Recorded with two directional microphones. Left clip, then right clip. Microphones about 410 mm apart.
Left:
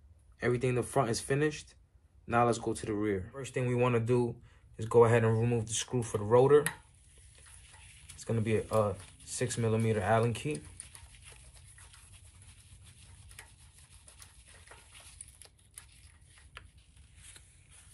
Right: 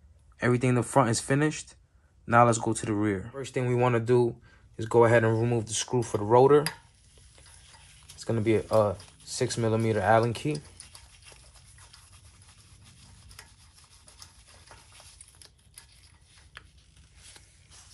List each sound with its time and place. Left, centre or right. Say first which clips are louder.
0.4 s speech: right 5 dB; centre
8.3 s speech: right 6 dB; right